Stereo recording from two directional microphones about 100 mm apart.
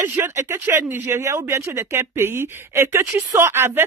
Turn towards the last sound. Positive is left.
turn(degrees=-25)  # may be behind; listen again after turning